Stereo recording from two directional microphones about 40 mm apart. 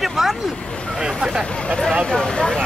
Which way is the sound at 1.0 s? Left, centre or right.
Right.